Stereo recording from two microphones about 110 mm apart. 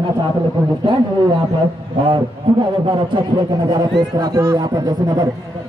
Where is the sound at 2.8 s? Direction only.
45° right (ahead or behind).